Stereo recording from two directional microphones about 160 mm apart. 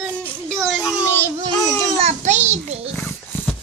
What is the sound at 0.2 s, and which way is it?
Child singing, centre (ahead or behind).